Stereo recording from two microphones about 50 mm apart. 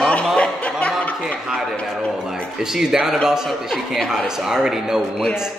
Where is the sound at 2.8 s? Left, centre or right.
Centre.